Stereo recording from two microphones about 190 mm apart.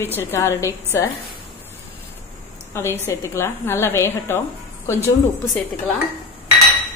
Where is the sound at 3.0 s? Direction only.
15° left (ahead or behind).